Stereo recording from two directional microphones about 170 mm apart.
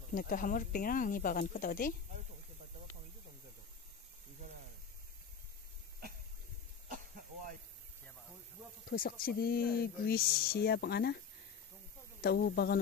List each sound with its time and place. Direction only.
0.1 s speech: 50° left (ahead or behind)
8.8 s speech: 60° left (ahead or behind)
12.2 s speech: 65° left (ahead or behind)